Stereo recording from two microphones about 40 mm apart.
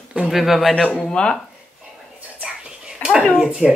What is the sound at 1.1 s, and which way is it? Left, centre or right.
Speech, left.